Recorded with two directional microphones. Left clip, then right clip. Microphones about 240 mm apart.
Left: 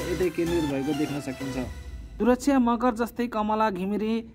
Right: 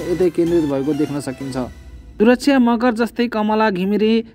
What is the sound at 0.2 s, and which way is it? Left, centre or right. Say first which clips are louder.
Speech: right 10 dB; centre.